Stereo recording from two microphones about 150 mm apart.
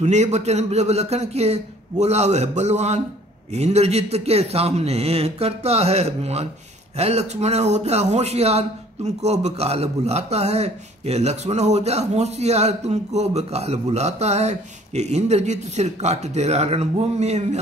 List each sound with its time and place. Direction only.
0.0 s speech: 50° right (ahead or behind)